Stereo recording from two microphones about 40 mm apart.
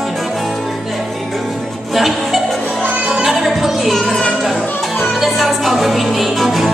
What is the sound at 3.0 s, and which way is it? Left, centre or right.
Music, right.